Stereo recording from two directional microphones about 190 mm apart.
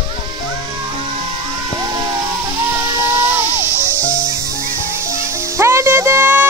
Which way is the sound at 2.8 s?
10° right (ahead or behind).